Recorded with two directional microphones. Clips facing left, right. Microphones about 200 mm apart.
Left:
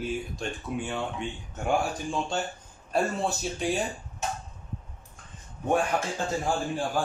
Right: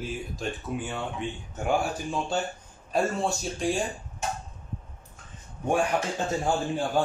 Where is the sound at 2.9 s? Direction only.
Centre (ahead or behind).